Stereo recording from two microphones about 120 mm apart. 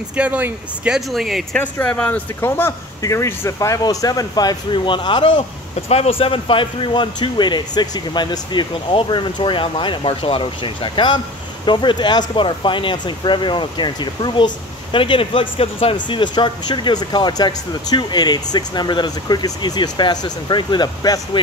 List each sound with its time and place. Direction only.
0.1 s speech: 10° right (ahead or behind)
1.6 s speech: 15° left (ahead or behind); by 5.4 s 40° left (ahead or behind)
5.9 s speech: 55° left (ahead or behind); by 21.4 s 35° left (ahead or behind)